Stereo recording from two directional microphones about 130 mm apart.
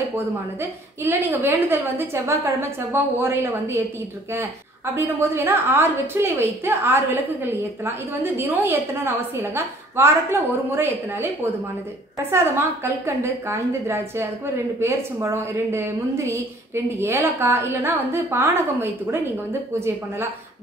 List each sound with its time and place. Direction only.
0.6 s a woman's voice: 15° right (ahead or behind)
4.9 s a woman's voice: 20° right (ahead or behind)
12.3 s a woman's voice: 20° right (ahead or behind)